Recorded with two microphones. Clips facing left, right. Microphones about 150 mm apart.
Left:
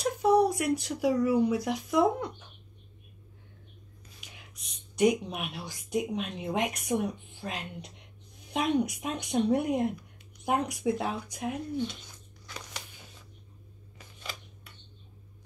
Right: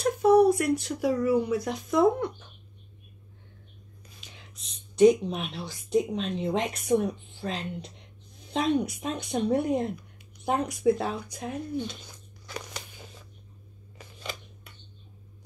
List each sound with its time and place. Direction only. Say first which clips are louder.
0.0 s speech: right 4 dB; 15° left (ahead or behind)
4.2 s a woman's voice: right 1 dB; 15° left (ahead or behind)